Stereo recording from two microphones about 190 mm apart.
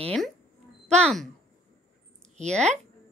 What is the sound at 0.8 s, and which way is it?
Speech, 5° left (ahead or behind).